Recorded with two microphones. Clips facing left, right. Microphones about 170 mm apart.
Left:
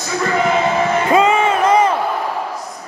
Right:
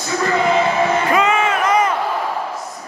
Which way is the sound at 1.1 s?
30° left (ahead or behind).